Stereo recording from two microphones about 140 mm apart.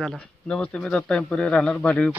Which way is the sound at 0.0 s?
5° left (ahead or behind).